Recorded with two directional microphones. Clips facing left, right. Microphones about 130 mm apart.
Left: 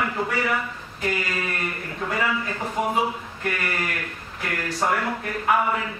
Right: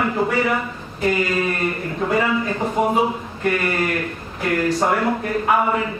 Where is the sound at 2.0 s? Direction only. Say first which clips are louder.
Right 6 dB; 25° right (ahead or behind).